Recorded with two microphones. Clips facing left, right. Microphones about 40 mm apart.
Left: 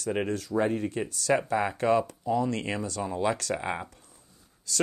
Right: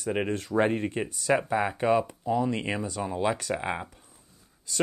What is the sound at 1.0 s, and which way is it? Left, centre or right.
Speech, centre.